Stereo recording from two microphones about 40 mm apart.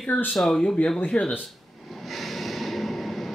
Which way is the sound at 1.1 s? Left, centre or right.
Left.